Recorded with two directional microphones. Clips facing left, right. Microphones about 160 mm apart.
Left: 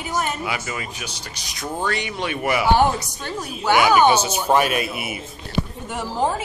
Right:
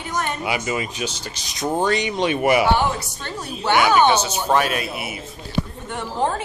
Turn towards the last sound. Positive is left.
turn(degrees=5)  # may be behind; listen again after turning